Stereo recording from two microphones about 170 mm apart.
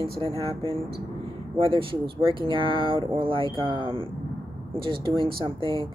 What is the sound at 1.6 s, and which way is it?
Speech, 30° right (ahead or behind).